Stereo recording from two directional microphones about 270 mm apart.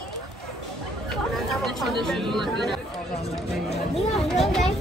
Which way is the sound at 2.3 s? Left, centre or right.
Centre.